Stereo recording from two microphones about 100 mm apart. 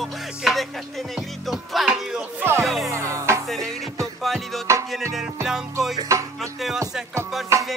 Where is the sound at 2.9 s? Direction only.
25° right (ahead or behind).